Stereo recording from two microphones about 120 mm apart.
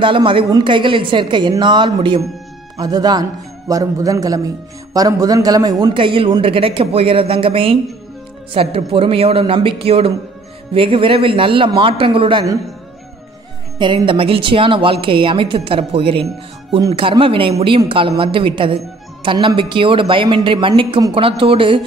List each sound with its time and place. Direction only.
0.0 s a woman's voice: 45° right (ahead or behind)
5.9 s a woman's voice: 45° right (ahead or behind)
13.7 s a woman's voice: 45° right (ahead or behind)